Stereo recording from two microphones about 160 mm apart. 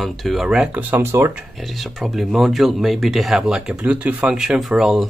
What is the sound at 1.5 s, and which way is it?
Speech, centre (ahead or behind).